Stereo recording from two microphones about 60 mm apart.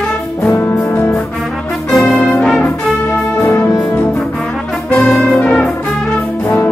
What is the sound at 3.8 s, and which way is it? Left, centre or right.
Brass instrument, left.